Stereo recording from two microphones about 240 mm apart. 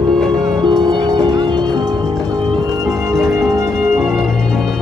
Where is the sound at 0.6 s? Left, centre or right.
Centre.